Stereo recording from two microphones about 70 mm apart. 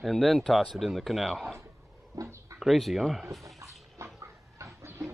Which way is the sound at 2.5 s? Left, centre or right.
Centre.